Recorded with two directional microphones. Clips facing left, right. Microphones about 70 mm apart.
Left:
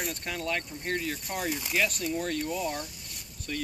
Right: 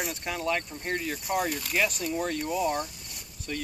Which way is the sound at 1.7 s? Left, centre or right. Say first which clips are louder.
Right 1 dB; centre.